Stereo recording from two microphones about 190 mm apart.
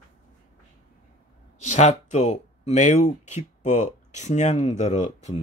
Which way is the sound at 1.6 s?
40° left (ahead or behind).